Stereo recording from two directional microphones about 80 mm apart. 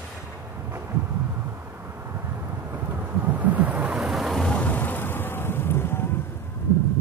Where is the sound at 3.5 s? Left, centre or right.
Centre.